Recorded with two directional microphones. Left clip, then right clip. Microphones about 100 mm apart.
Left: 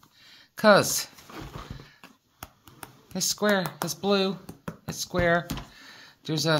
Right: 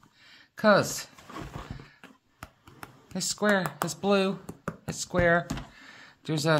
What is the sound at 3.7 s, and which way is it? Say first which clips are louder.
Speech: even; 5° left (ahead or behind).